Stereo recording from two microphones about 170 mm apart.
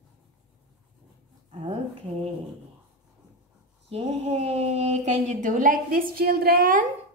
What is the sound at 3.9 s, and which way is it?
Speech, 35° right (ahead or behind).